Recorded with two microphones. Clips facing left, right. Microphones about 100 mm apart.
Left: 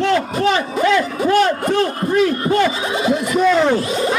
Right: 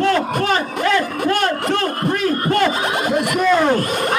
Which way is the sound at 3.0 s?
55° right (ahead or behind).